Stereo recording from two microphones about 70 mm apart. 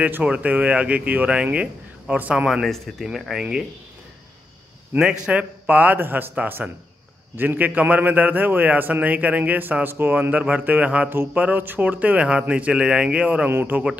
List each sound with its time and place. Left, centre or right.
0.0 s speech: centre
2.6 s speech: centre
4.9 s a man's voice: centre
13.5 s a man's voice: right